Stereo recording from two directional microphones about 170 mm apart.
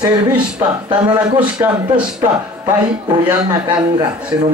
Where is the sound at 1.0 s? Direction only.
25° right (ahead or behind).